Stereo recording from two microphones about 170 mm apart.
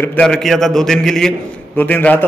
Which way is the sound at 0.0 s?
10° left (ahead or behind).